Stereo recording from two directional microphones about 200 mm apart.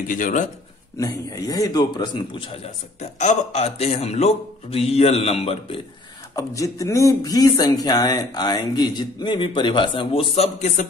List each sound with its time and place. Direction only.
0.1 s a man's voice: 40° left (ahead or behind)
0.9 s a man's voice: 15° left (ahead or behind)
6.3 s a man's voice: 15° left (ahead or behind); by 10.9 s 35° left (ahead or behind)